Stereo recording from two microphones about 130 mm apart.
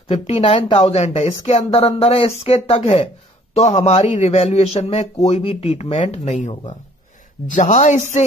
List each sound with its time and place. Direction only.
0.1 s a man's voice: 45° left (ahead or behind); by 8.0 s 65° left (ahead or behind)